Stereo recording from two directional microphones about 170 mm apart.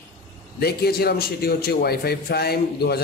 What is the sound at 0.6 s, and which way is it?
Speech, 65° left (ahead or behind).